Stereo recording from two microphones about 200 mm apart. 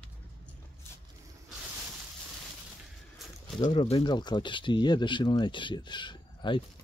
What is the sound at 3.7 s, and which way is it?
Speech, 25° left (ahead or behind).